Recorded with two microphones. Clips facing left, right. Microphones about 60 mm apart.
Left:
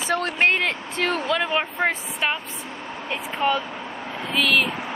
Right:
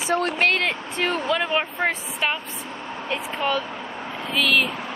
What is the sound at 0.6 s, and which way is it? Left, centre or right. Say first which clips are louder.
A woman's voice: even; centre.